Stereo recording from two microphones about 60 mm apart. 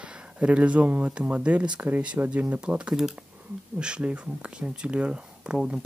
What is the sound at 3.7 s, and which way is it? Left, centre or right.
Speech, centre.